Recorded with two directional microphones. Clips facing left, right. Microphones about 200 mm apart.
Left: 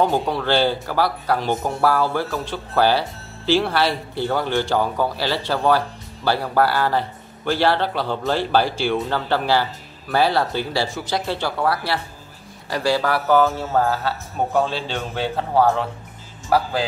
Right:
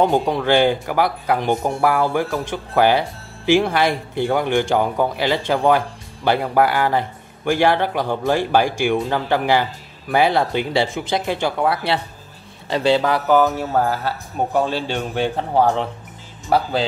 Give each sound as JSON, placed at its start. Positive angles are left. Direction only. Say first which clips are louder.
{"t": 0.0, "sound": "speech", "louder": "right 3 dB", "side_deg": -20}